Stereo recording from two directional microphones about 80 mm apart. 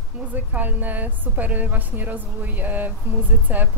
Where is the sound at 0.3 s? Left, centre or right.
Right.